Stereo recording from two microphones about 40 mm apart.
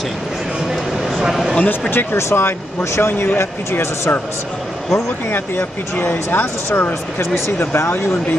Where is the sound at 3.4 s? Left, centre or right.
Left.